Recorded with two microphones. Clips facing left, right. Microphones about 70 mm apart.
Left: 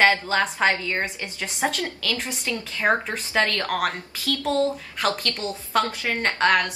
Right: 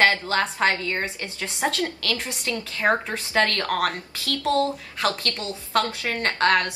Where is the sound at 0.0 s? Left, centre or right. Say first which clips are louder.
Left 1 dB; centre.